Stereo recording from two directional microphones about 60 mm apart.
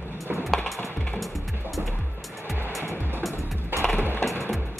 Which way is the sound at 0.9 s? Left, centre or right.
Left.